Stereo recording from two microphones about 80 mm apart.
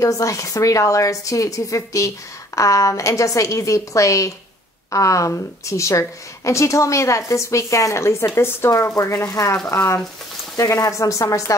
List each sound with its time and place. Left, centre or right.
0.0 s speech: left